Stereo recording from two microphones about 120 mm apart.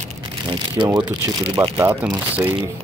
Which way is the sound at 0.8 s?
30° right (ahead or behind).